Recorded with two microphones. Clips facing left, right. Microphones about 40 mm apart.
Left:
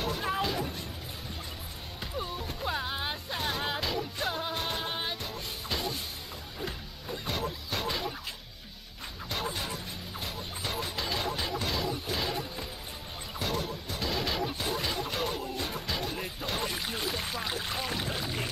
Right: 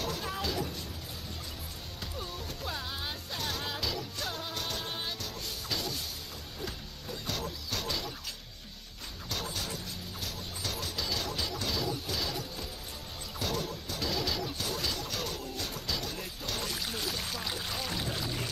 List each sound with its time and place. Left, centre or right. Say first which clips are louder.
0.0 s music: left 4 dB; left
2.1 s music: left 6 dB; left
9.3 s a sound: left 3 dB; left
10.2 s music: left 2 dB; left